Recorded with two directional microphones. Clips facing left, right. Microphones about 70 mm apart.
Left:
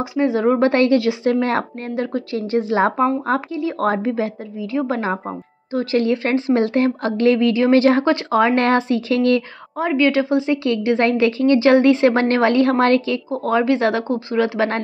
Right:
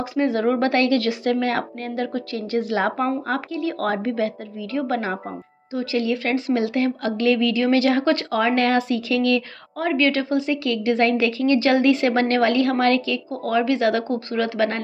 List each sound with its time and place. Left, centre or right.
0.0 s a woman's voice: centre
5.7 s speech: left
9.8 s a woman's voice: centre